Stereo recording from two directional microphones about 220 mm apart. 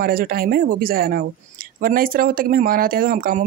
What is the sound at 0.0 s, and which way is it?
Speech, 40° right (ahead or behind).